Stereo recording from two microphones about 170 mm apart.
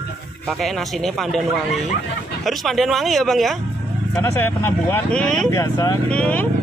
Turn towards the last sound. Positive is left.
turn(degrees=10)  # may be behind; listen again after turning